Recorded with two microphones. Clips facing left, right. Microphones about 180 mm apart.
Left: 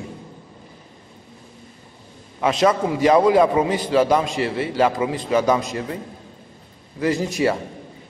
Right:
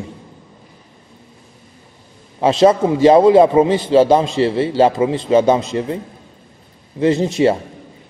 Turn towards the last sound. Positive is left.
turn(degrees=-25)  # may be behind; listen again after turning